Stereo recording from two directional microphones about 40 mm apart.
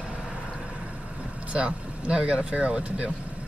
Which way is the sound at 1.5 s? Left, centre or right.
Right.